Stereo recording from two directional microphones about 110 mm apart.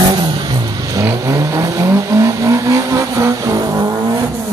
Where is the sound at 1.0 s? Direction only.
30° right (ahead or behind).